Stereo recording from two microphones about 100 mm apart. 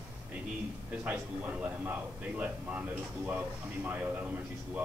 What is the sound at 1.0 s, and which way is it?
A man's voice, 15° right (ahead or behind).